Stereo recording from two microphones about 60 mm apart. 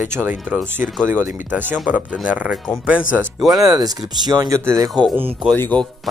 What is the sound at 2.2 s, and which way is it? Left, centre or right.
Speech, right.